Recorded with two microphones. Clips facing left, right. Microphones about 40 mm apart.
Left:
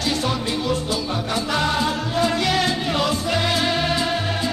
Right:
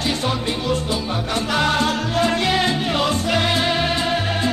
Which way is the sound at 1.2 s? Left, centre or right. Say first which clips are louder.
Right 3 dB; right.